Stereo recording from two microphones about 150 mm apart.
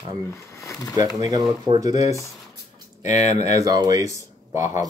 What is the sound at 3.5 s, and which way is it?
Speech, 25° right (ahead or behind).